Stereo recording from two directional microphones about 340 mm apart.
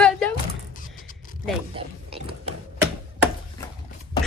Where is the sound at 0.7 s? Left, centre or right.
Left.